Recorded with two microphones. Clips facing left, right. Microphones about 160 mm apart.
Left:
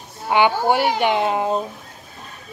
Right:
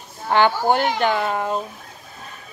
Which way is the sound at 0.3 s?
15° left (ahead or behind).